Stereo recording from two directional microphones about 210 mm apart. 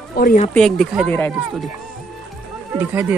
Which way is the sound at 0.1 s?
40° left (ahead or behind).